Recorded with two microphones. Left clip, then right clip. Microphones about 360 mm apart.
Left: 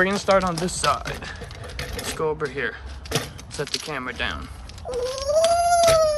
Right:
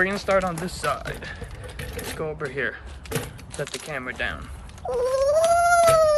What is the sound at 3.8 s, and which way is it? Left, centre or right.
Speech, centre.